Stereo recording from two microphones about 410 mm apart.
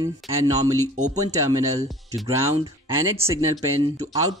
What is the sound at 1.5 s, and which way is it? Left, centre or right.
Speech, centre.